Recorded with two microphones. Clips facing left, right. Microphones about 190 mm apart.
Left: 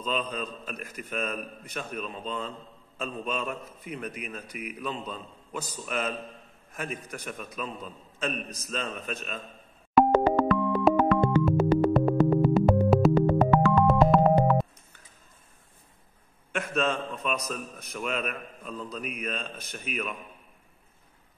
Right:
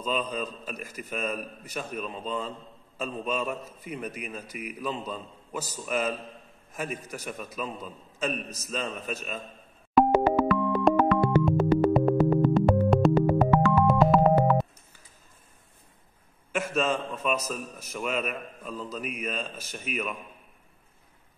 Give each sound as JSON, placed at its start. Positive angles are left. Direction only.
{"t": 0.0, "sound": "a man's voice", "side_deg": -10}
{"t": 4.5, "sound": "a man's voice", "side_deg": 55}
{"t": 4.7, "sound": "a man's voice", "side_deg": -10}
{"t": 9.9, "sound": "dial tone", "side_deg": 0}
{"t": 12.1, "sound": "music", "side_deg": 5}
{"t": 16.7, "sound": "a man's voice", "side_deg": -5}